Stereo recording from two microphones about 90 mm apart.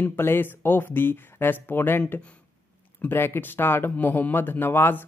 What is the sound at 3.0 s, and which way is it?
Speech, 25° left (ahead or behind).